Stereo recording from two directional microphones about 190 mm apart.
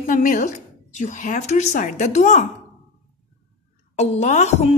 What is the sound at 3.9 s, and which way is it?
Speech, 35° left (ahead or behind).